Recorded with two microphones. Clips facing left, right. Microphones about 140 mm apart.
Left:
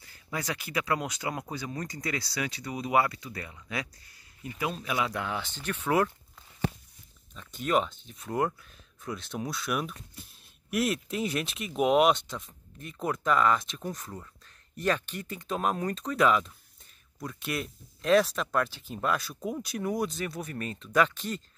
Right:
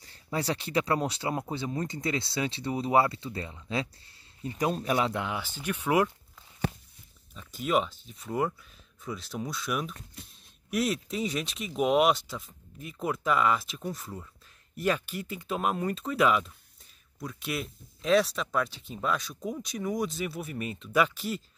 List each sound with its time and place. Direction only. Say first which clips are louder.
0.0 s speech: right 4 dB; 30° right (ahead or behind)
5.2 s speech: even; 10° right (ahead or behind)
7.3 s speech: even; 5° right (ahead or behind)